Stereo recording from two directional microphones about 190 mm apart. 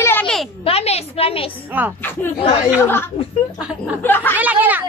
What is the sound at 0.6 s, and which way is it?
A woman's voice, 35° left (ahead or behind).